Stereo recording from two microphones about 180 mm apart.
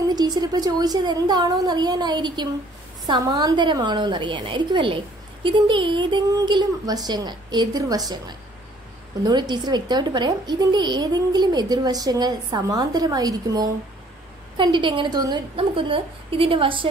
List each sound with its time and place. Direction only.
0.1 s a woman's voice: 25° right (ahead or behind)